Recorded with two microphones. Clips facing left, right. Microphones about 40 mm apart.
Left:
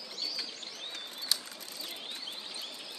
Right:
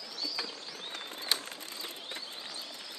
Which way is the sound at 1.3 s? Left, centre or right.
Right.